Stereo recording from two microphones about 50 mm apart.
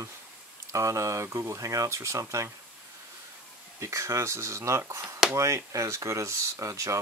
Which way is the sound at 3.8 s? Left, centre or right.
Right.